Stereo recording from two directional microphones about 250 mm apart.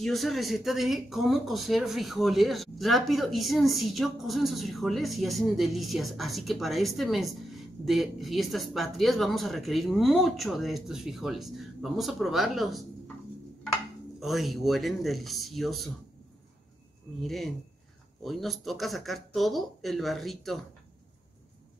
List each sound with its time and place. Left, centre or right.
0.0 s speech: centre
14.2 s speech: centre
17.2 s speech: centre